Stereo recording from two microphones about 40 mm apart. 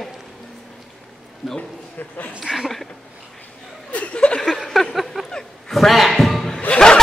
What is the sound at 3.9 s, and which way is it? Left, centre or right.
Chuckle, left.